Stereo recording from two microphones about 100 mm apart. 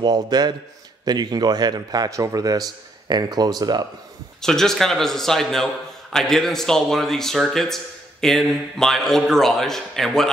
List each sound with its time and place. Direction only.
0.0 s a man's voice: 45° right (ahead or behind)
4.4 s a man's voice: 5° left (ahead or behind)